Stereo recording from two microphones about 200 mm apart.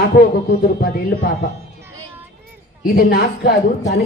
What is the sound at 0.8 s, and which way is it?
Speech, 50° left (ahead or behind).